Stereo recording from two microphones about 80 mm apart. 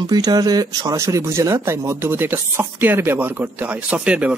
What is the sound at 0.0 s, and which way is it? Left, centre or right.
Speech, right.